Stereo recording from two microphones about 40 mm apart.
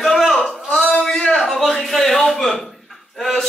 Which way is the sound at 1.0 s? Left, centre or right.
Left.